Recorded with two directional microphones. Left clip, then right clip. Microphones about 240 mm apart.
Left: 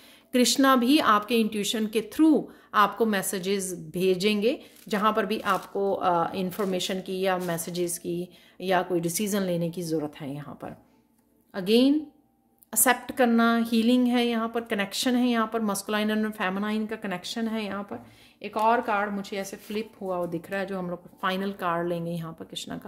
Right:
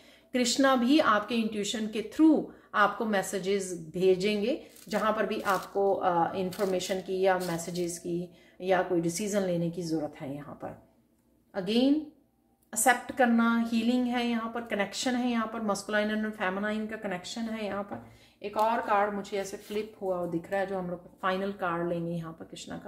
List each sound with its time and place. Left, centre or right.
0.3 s speech: left